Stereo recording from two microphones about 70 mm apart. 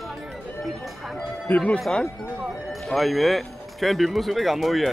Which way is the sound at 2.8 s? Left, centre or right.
Centre.